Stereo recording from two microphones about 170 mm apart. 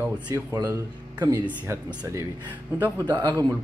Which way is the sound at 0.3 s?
15° right (ahead or behind).